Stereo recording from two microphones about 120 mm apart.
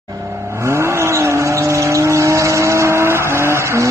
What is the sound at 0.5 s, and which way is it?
Vehicle, 25° right (ahead or behind).